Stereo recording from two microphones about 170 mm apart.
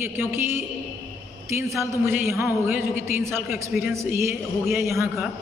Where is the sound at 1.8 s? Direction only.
15° right (ahead or behind).